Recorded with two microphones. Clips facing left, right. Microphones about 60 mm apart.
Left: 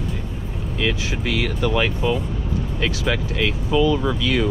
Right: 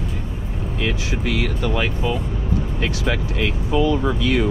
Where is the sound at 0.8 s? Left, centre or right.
Left.